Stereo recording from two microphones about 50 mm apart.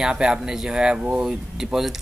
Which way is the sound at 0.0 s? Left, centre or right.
Centre.